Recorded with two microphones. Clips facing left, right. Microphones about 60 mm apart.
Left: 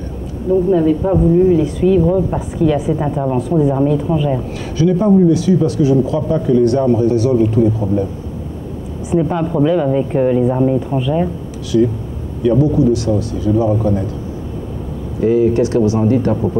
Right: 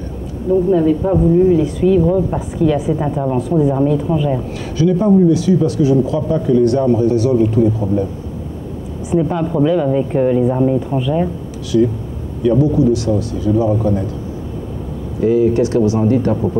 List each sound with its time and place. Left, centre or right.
0.7 s speech: left
9.1 s speech: left
15.1 s speech: left